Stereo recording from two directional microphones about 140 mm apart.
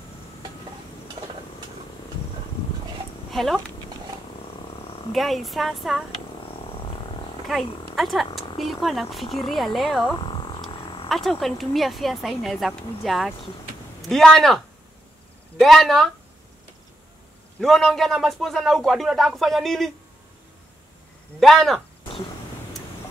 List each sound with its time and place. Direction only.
3.3 s speech: centre (ahead or behind)
5.1 s speech: centre (ahead or behind)
7.5 s speech: centre (ahead or behind)
10.2 s a sound: 35° left (ahead or behind)
11.1 s speech: centre (ahead or behind)
17.6 s speech: centre (ahead or behind)
21.4 s speech: centre (ahead or behind)